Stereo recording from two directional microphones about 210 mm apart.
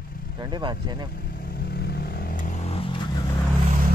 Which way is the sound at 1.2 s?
45° left (ahead or behind).